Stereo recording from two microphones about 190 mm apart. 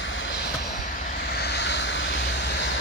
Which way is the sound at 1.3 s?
60° left (ahead or behind).